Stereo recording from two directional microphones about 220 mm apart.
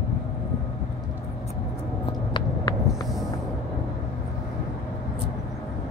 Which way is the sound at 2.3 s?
20° left (ahead or behind).